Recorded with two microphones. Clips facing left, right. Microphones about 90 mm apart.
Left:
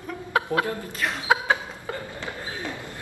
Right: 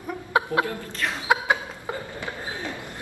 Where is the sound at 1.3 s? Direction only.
15° right (ahead or behind).